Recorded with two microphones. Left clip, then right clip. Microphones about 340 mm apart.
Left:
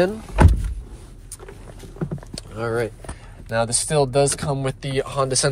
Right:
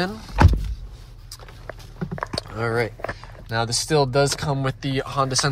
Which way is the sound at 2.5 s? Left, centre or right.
Right.